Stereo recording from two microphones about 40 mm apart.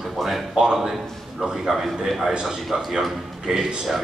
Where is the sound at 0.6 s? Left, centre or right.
Centre.